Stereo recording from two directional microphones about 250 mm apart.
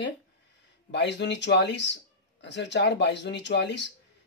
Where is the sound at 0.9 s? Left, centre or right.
Left.